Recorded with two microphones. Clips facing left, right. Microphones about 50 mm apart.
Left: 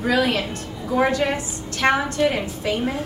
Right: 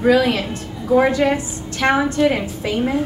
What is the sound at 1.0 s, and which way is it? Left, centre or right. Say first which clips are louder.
A woman's voice: right 3 dB; right.